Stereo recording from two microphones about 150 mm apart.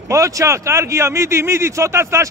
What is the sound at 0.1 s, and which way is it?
Speech, 20° right (ahead or behind).